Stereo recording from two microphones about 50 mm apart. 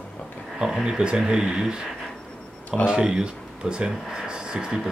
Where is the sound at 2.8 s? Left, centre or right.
Centre.